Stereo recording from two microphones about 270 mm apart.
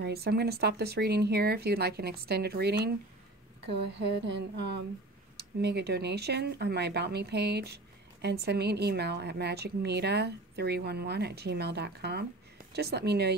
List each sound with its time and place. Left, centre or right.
0.0 s a woman's voice: right